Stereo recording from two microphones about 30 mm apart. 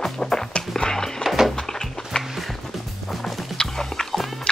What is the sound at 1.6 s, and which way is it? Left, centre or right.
Music, centre.